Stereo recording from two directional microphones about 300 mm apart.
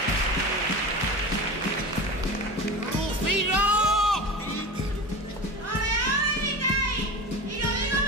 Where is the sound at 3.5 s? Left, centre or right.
Centre.